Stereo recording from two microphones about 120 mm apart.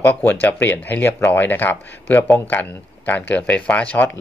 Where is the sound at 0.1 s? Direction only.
15° left (ahead or behind).